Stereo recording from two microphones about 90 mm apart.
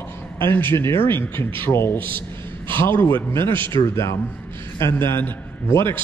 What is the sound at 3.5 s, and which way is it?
Speech, 65° right (ahead or behind).